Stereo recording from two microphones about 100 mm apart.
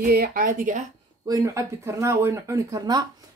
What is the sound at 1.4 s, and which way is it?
Speech, 30° right (ahead or behind).